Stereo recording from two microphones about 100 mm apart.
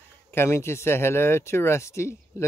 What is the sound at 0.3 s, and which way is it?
Speech, 25° left (ahead or behind).